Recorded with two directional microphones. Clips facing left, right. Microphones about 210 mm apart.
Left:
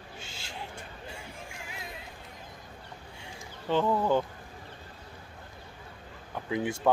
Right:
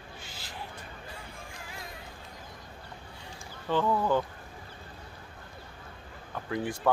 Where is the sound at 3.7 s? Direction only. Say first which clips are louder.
Left 1 dB; 20° left (ahead or behind).